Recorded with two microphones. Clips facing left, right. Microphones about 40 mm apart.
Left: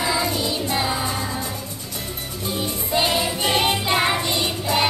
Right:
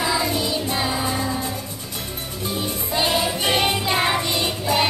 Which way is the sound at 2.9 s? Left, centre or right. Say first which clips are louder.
Even; centre.